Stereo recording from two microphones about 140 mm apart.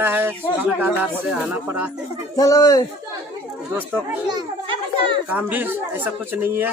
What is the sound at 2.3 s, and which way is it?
Speech, 25° left (ahead or behind).